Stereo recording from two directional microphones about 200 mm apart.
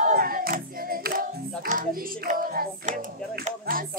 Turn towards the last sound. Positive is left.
turn(degrees=-45)  # may be behind; listen again after turning